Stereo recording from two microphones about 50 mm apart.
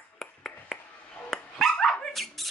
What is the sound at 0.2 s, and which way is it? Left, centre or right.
Finger snapping, centre.